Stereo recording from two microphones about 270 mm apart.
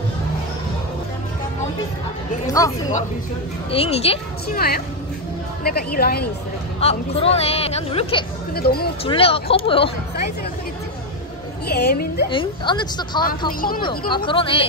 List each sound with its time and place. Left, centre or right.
2.4 s a woman's voice: centre
4.6 s a woman's voice: left
6.8 s a woman's voice: left
8.5 s a woman's voice: left
9.0 s a woman's voice: left
11.6 s a woman's voice: left
12.3 s a woman's voice: centre
13.5 s a woman's voice: left
13.8 s a woman's voice: centre